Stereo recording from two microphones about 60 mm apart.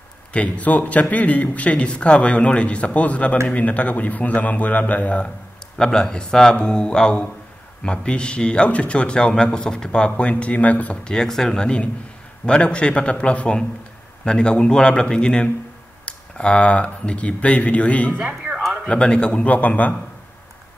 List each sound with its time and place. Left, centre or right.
0.3 s a man's voice: left
5.8 s a man's voice: centre; by 11.0 s left
11.1 s a man's voice: centre; by 20.0 s left